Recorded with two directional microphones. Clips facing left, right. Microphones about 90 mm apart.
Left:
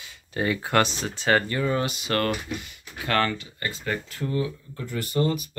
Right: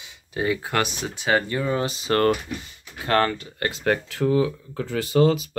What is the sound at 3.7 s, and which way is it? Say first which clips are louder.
Speech: right 7 dB; 90° right.